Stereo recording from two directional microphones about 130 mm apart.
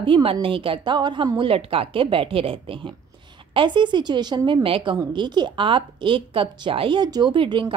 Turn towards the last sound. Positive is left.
turn(degrees=-40)  # may be behind; listen again after turning